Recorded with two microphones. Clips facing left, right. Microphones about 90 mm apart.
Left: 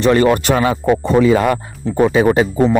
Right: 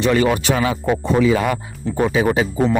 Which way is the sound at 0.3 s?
60° left (ahead or behind).